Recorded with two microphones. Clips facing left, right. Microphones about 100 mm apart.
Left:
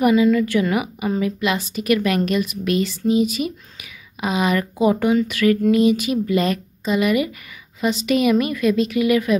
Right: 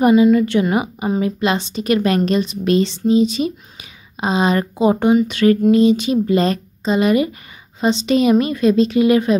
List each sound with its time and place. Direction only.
0.0 s a woman's voice: 25° right (ahead or behind)